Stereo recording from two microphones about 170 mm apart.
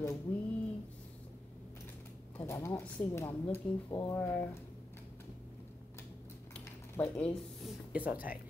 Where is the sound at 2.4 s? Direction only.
15° left (ahead or behind).